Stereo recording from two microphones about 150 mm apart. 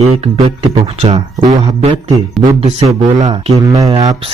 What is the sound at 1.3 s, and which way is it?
Speech, 25° right (ahead or behind).